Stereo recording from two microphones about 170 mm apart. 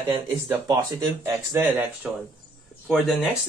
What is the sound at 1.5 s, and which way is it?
Speech, 15° right (ahead or behind).